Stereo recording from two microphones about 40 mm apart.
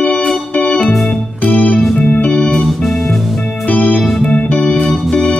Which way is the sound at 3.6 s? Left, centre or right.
Left.